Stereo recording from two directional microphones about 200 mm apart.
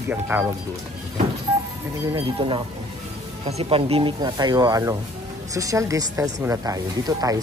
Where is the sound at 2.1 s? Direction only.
25° right (ahead or behind).